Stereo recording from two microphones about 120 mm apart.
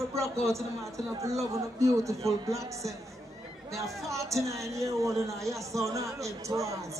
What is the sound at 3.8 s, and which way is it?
A man's voice, 25° right (ahead or behind).